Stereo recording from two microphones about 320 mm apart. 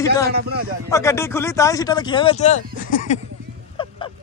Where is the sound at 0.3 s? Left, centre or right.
Right.